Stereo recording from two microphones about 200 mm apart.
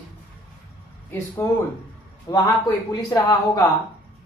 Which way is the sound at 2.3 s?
15° left (ahead or behind).